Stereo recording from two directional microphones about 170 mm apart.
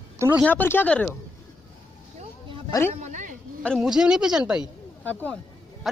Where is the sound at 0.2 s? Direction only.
10° right (ahead or behind).